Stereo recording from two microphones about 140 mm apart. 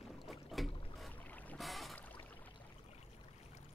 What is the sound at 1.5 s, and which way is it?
Boat, centre (ahead or behind).